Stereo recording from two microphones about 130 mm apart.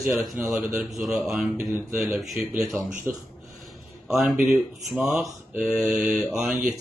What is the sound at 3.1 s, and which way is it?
Speech, 20° right (ahead or behind).